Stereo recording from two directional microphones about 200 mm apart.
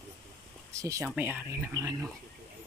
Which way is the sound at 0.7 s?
15° right (ahead or behind).